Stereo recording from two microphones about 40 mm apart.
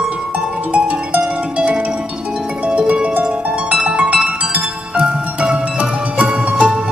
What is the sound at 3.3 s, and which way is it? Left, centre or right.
Music, right.